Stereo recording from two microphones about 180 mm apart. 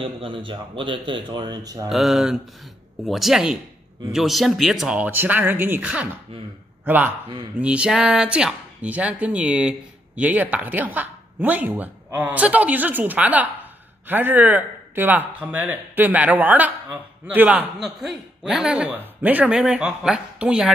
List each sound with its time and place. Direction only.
0.0 s speech: 30° right (ahead or behind)
1.9 s a man's voice: centre (ahead or behind)